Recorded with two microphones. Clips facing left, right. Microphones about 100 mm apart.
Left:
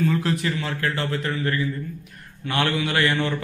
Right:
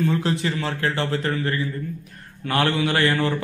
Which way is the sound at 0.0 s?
25° right (ahead or behind).